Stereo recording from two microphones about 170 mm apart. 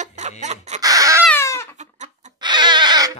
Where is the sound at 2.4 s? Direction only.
25° right (ahead or behind).